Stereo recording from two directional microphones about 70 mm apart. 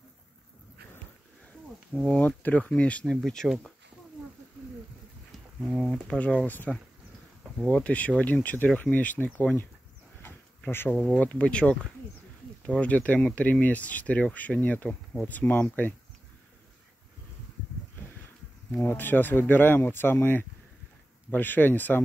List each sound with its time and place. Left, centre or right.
2.1 s speech: left
3.1 s speech: centre
5.8 s speech: centre
6.1 s speech: centre
18.8 s speech: left